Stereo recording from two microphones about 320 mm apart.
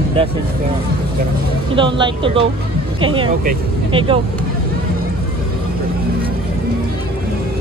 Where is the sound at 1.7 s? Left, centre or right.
Centre.